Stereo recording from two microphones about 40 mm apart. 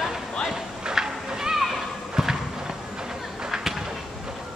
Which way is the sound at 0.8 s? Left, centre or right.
Centre.